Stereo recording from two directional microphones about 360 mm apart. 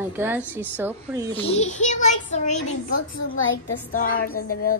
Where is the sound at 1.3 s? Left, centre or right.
Centre.